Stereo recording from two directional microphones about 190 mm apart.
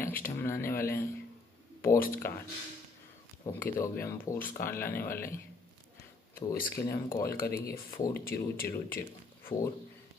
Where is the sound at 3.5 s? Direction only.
10° left (ahead or behind).